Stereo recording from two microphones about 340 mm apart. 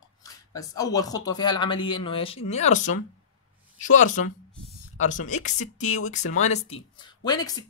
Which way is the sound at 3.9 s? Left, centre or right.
Left.